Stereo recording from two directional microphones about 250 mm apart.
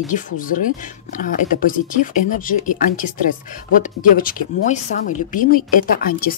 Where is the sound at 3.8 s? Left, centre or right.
Left.